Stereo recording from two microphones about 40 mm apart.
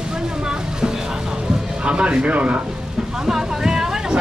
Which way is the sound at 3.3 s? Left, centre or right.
Centre.